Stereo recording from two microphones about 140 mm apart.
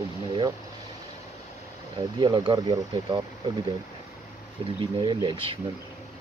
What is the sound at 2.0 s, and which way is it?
Speech, 35° right (ahead or behind).